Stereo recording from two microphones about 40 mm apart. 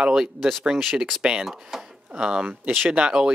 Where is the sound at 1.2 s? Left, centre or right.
Centre.